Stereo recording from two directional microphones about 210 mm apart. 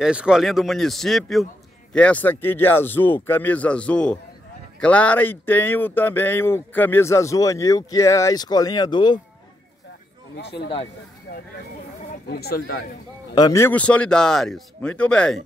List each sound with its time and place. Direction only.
0.0 s speech: 5° right (ahead or behind); by 9.2 s 20° left (ahead or behind)
10.3 s speech: 55° left (ahead or behind)
12.1 s speech: 50° left (ahead or behind)
13.3 s speech: 15° left (ahead or behind)